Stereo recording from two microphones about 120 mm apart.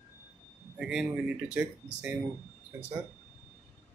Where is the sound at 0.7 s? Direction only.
5° right (ahead or behind).